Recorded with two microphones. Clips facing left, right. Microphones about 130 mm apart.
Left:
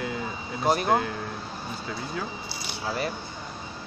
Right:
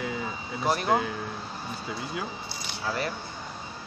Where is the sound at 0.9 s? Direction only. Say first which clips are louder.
Left 1 dB; centre (ahead or behind).